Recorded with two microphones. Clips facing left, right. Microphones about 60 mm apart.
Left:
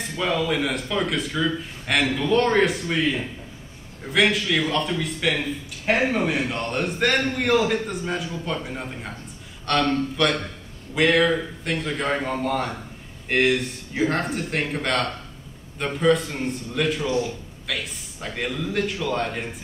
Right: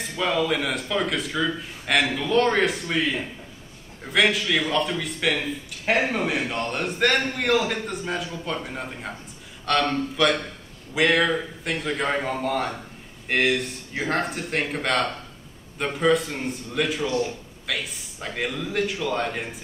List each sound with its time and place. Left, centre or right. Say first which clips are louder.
0.0 s a man's voice: even; centre
17.0 s a man's voice: left 1 dB; left
17.6 s a man's voice: even; centre